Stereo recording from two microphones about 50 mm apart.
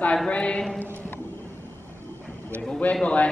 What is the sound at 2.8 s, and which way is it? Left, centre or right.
Speech, left.